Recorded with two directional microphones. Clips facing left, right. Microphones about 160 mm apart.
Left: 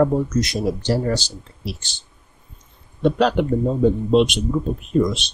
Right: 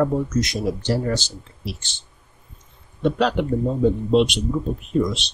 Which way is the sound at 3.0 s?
40° left (ahead or behind).